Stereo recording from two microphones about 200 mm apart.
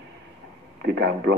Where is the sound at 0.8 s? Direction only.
55° right (ahead or behind).